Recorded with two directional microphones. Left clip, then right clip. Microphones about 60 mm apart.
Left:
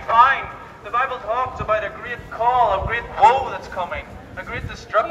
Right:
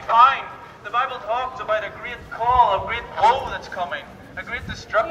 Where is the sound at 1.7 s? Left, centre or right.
Left.